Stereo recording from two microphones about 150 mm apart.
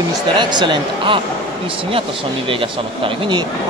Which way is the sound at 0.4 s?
30° right (ahead or behind).